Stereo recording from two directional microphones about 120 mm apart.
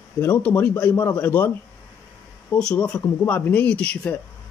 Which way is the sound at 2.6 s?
5° left (ahead or behind).